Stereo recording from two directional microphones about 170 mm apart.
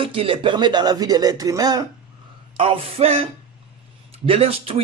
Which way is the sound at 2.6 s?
35° right (ahead or behind).